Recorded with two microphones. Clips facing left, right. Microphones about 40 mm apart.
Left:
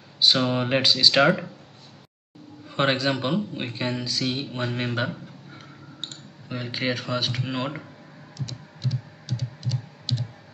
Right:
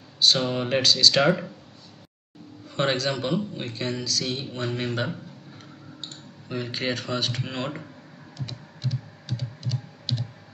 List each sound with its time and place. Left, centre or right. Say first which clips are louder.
0.2 s speech: left 1 dB; centre
2.7 s speech: left 2 dB; centre
6.5 s speech: left 1 dB; centre
8.8 s computer keyboard: left 1 dB; centre